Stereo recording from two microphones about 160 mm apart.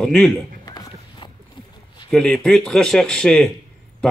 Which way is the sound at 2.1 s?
Centre (ahead or behind).